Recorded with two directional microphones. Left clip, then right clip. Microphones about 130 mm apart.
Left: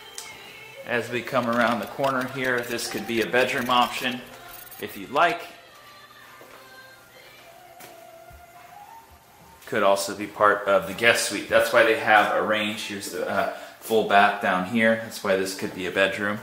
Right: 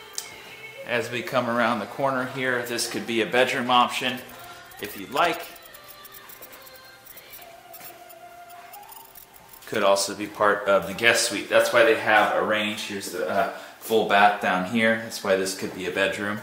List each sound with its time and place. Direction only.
0.8 s speech: 20° left (ahead or behind)
9.7 s speech: 20° left (ahead or behind)
13.8 s speech: 20° left (ahead or behind)